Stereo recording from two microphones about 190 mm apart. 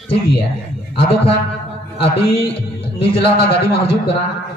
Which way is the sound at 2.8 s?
30° left (ahead or behind).